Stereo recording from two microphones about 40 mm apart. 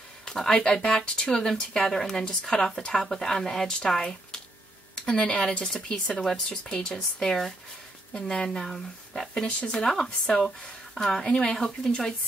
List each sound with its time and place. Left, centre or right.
0.3 s speech: centre
8.6 s speech: centre
9.3 s speech: centre